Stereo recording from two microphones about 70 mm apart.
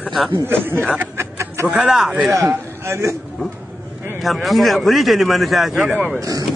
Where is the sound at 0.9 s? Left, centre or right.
Right.